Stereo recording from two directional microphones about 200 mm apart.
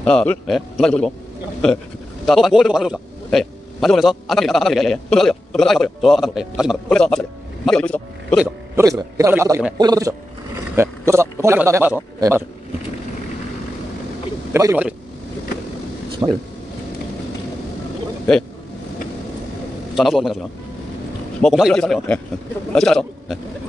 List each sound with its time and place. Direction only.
0.0 s a man's voice: 5° left (ahead or behind)
2.2 s a man's voice: centre (ahead or behind)
8.7 s a man's voice: 15° right (ahead or behind)
14.5 s a man's voice: 10° right (ahead or behind)
16.2 s a man's voice: 15° right (ahead or behind)
18.3 s a man's voice: 5° left (ahead or behind)
20.0 s a man's voice: centre (ahead or behind)